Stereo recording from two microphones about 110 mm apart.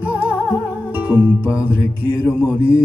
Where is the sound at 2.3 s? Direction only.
15° right (ahead or behind).